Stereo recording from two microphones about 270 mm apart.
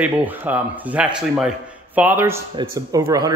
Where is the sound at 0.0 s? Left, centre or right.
Centre.